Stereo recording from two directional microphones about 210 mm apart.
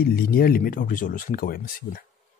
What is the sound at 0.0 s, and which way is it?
Speech, 45° left (ahead or behind).